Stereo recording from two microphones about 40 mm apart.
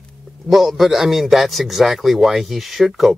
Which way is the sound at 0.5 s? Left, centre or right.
Centre.